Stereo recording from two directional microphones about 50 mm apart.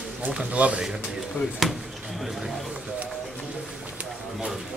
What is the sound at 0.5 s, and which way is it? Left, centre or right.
Speech, right.